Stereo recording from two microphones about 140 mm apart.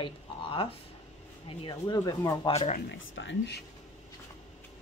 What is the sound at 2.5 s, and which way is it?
Speech, 45° left (ahead or behind).